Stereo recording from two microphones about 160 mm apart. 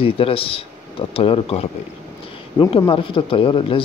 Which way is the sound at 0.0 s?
35° left (ahead or behind).